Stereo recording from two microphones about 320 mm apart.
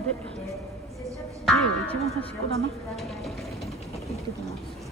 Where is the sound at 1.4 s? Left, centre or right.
Centre.